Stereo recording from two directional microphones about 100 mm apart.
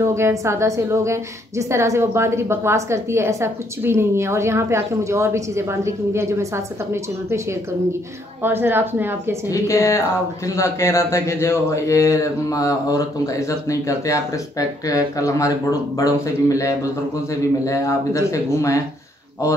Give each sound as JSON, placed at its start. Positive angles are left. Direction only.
{"t": 0.0, "sound": "a woman's voice", "side_deg": -25}
{"t": 9.5, "sound": "speech", "side_deg": 30}